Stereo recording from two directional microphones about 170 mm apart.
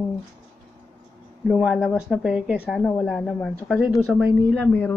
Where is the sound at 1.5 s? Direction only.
5° right (ahead or behind).